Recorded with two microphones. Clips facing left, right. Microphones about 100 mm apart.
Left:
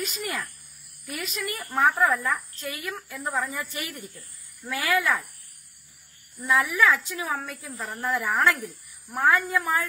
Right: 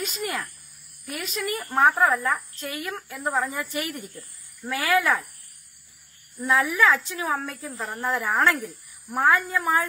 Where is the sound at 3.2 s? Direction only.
30° right (ahead or behind).